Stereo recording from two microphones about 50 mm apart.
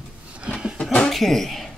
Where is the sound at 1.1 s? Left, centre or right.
Centre.